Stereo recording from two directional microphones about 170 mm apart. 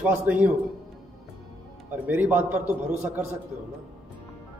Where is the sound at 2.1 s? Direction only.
10° right (ahead or behind).